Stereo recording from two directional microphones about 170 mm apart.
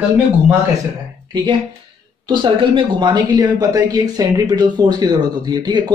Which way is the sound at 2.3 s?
30° right (ahead or behind).